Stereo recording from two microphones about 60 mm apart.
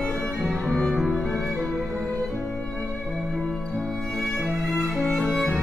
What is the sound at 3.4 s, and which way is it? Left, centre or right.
Music, centre.